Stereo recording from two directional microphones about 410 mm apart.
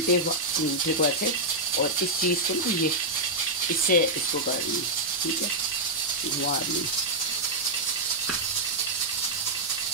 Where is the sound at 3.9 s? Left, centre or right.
Centre.